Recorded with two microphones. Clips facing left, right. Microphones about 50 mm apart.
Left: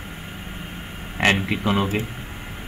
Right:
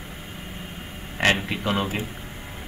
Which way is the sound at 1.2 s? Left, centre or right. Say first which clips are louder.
Left 2 dB; left.